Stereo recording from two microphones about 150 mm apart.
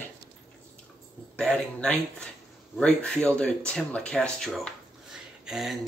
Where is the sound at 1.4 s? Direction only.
5° left (ahead or behind).